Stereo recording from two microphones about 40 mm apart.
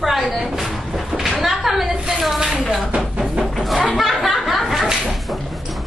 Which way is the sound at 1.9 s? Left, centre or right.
Right.